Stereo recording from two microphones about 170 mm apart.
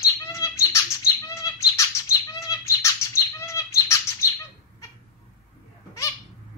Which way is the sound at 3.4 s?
15° left (ahead or behind).